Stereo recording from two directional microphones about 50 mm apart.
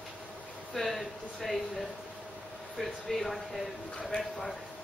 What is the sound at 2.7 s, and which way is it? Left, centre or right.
Speech, centre.